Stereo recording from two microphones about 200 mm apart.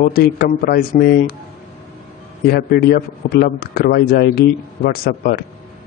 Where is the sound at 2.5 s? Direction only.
50° left (ahead or behind).